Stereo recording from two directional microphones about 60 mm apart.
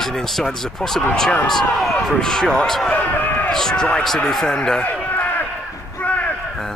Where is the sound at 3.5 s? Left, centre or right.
Centre.